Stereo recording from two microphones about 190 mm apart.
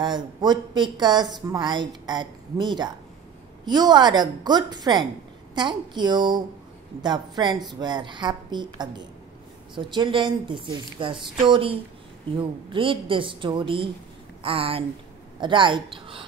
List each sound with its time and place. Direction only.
0.0 s speech: 25° right (ahead or behind)